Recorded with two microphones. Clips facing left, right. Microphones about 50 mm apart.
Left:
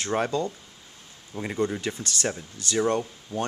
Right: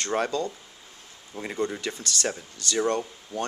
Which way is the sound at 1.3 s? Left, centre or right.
Centre.